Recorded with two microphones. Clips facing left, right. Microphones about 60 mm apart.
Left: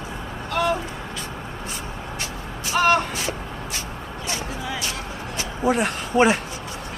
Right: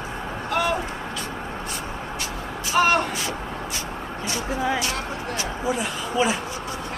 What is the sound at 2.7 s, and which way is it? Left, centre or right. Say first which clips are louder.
Speech: even; centre.